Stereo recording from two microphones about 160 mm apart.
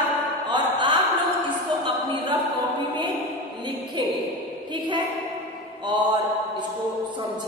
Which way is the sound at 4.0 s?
30° right (ahead or behind).